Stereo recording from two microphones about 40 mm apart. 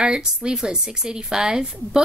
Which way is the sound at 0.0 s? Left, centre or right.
Right.